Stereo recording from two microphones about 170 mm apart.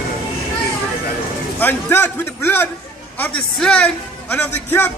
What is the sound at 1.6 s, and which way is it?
A man's voice, 10° left (ahead or behind).